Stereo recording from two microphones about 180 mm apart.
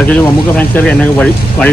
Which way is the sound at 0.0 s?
10° left (ahead or behind).